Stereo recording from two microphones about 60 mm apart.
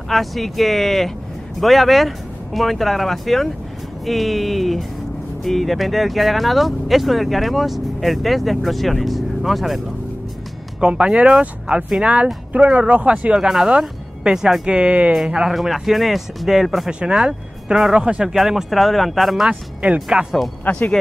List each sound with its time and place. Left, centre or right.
0.1 s speech: centre
10.8 s speech: centre
15.1 s speech: centre
17.9 s speech: centre
19.8 s speech: centre
20.7 s speech: left